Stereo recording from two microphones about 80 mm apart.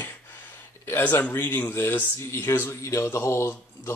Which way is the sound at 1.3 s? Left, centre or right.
Left.